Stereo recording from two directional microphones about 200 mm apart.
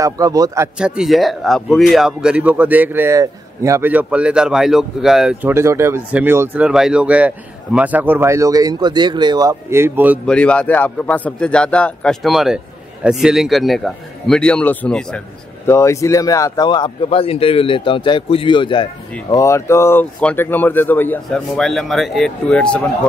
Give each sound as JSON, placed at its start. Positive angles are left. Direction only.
{"t": 0.0, "sound": "speech", "side_deg": -15}
{"t": 0.7, "sound": "speech", "side_deg": -5}
{"t": 5.5, "sound": "speech", "side_deg": -15}
{"t": 10.2, "sound": "a man's voice", "side_deg": 5}